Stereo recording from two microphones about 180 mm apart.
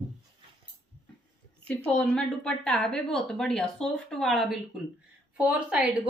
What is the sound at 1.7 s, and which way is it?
Speech, 5° left (ahead or behind).